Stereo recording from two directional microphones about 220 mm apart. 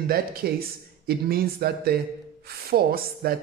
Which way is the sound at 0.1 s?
45° right (ahead or behind).